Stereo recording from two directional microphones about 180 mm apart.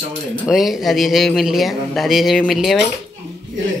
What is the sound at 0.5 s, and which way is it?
Speech, centre (ahead or behind).